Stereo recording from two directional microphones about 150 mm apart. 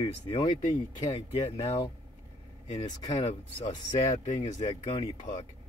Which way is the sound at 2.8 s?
25° left (ahead or behind).